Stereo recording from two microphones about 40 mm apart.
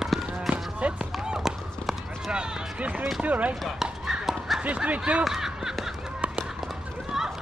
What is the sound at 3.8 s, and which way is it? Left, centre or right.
Dog, centre.